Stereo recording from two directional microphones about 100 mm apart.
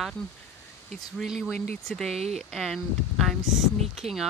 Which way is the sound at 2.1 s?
90° right.